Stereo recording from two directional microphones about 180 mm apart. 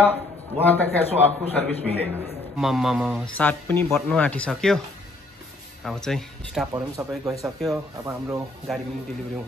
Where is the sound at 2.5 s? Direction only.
Centre (ahead or behind).